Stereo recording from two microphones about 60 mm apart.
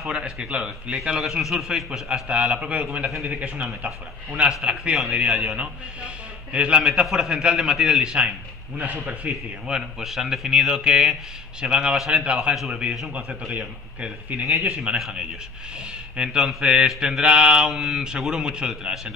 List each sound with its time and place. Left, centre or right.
0.1 s speech: centre
1.2 s a man's voice: centre
8.7 s a man's voice: right
9.7 s a man's voice: centre